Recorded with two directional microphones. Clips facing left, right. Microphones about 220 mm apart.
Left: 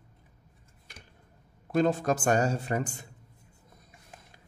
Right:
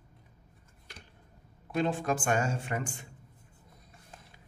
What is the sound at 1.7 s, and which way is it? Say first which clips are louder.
A man's voice: left 4 dB; 40° left (ahead or behind).